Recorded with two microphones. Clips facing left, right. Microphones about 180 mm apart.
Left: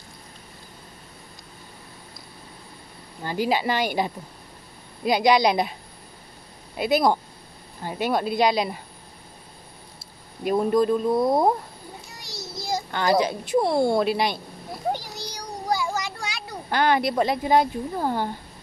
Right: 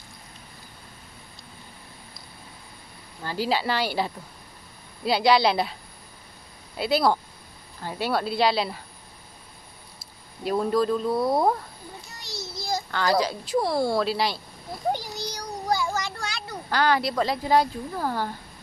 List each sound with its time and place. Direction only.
3.2 s speech: 15° left (ahead or behind)
6.8 s speech: 15° left (ahead or behind)
10.4 s speech: 15° left (ahead or behind)
12.5 s a sound: 15° left (ahead or behind)
13.6 s speech: 25° left (ahead or behind)
14.9 s a sound: 10° left (ahead or behind)